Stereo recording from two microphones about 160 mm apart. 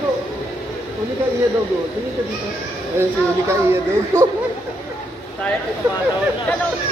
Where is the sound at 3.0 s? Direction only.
15° right (ahead or behind).